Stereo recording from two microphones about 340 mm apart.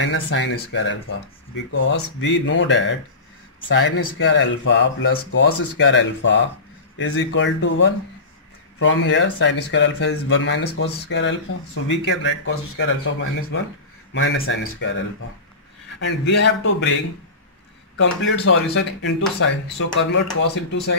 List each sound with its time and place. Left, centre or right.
0.0 s speech: left
16.3 s speech: left